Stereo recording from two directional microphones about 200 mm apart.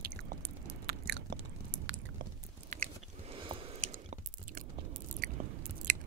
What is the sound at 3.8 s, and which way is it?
Biting, 40° right (ahead or behind).